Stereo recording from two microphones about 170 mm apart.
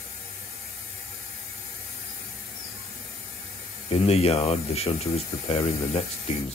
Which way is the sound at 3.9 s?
35° left (ahead or behind).